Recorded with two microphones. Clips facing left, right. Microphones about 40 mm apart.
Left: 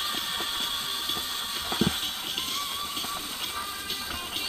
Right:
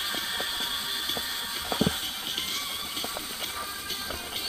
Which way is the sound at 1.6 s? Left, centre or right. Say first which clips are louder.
Even; left.